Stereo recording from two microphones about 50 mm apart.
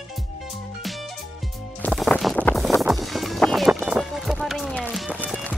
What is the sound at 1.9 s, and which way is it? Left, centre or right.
Music, centre.